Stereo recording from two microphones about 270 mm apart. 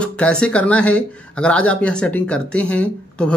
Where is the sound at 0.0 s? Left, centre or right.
Centre.